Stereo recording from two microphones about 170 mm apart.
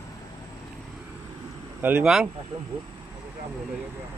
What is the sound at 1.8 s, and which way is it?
Speech, 10° right (ahead or behind).